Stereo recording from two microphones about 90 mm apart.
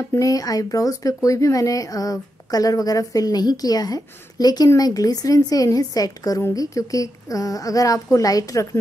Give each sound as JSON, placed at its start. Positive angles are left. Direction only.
{"t": 0.1, "sound": "a woman's voice", "side_deg": 40}